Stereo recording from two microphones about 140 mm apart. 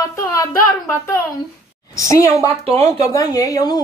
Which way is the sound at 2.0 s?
25° left (ahead or behind).